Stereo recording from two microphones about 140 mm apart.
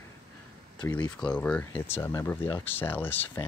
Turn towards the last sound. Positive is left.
turn(degrees=15)  # may be behind; listen again after turning